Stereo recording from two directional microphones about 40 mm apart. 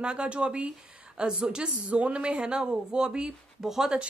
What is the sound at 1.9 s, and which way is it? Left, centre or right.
A woman's voice, right.